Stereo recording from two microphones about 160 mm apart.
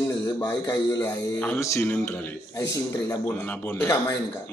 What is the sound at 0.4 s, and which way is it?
A man's voice, 25° left (ahead or behind).